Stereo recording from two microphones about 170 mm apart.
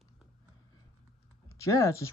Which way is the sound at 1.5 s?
15° left (ahead or behind).